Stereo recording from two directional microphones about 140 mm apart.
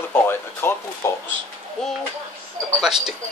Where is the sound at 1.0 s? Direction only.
20° left (ahead or behind).